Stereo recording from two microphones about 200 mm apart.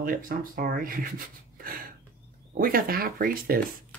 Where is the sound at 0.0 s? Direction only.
45° right (ahead or behind).